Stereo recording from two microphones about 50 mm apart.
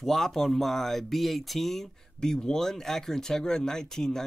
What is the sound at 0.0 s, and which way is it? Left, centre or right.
Speech, centre.